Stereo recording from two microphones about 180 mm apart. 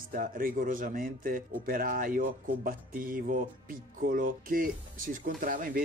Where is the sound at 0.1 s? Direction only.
50° right (ahead or behind).